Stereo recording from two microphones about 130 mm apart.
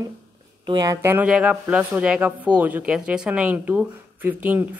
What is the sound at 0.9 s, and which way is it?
Speech, 15° right (ahead or behind).